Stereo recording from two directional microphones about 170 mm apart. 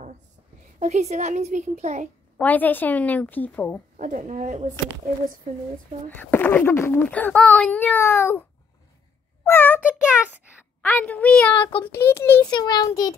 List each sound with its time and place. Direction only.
0.7 s a woman's voice: 45° right (ahead or behind)
2.3 s speech: 10° left (ahead or behind)
3.9 s a woman's voice: 45° right (ahead or behind)
6.0 s a child's voice: 10° left (ahead or behind)
10.8 s speech: 10° left (ahead or behind)
12.4 s a child's voice: 25° left (ahead or behind)